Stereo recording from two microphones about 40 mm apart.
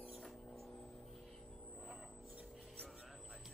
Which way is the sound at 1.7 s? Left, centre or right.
Centre.